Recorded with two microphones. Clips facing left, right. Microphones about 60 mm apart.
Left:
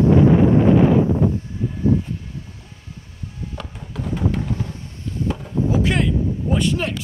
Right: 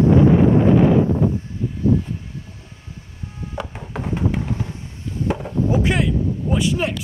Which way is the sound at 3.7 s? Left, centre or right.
Right.